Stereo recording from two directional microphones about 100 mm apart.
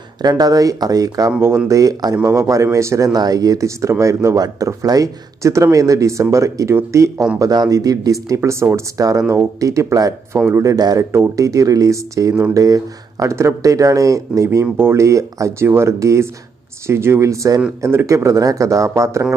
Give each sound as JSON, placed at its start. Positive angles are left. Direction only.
{"t": 0.2, "sound": "speech", "side_deg": -40}